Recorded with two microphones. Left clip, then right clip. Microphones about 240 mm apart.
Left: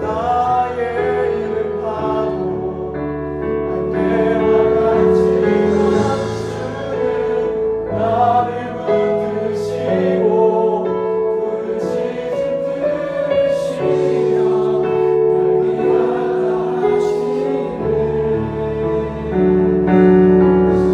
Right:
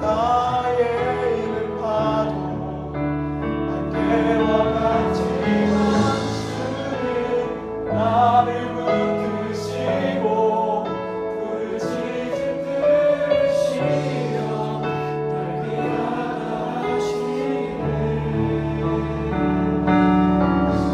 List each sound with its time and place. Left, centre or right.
19.8 s music: centre